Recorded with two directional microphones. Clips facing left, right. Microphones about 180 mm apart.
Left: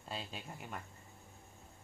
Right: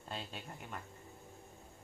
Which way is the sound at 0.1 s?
5° left (ahead or behind).